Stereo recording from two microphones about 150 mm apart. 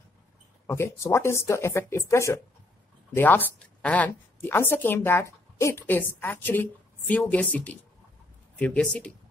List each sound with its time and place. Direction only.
0.7 s a woman's voice: 15° left (ahead or behind)